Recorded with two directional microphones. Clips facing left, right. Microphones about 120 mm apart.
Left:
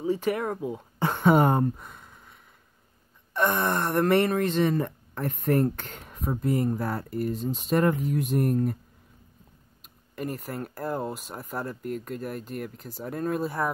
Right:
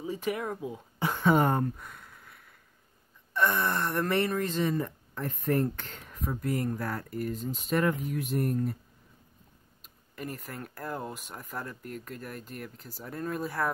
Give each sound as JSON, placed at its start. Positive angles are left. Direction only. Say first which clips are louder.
{"t": 0.2, "sound": "speech", "louder": "left 5 dB", "side_deg": 55}
{"t": 1.2, "sound": "a sound", "louder": "left 4 dB", "side_deg": 25}
{"t": 3.3, "sound": "speech", "louder": "left 3 dB", "side_deg": 40}
{"t": 4.3, "sound": "speech", "louder": "left 5 dB", "side_deg": 75}
{"t": 4.6, "sound": "speech", "louder": "left 4 dB", "side_deg": 50}
{"t": 5.8, "sound": "speech", "louder": "left 2 dB", "side_deg": 40}
{"t": 10.1, "sound": "speech", "louder": "left 6 dB", "side_deg": 45}
{"t": 10.5, "sound": "speech", "louder": "left 6 dB", "side_deg": 35}
{"t": 13.4, "sound": "speech", "louder": "left 3 dB", "side_deg": 20}